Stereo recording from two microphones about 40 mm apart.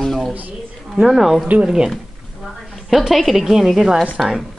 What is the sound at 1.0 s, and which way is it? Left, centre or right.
Speech, centre.